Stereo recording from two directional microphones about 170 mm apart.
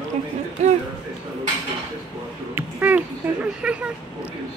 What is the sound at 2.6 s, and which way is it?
Speech, 10° right (ahead or behind).